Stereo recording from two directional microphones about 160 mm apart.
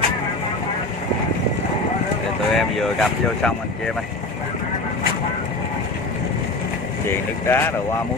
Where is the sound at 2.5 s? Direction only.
Centre (ahead or behind).